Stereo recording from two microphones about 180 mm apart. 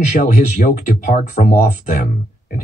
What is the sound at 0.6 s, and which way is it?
Speech, 45° left (ahead or behind).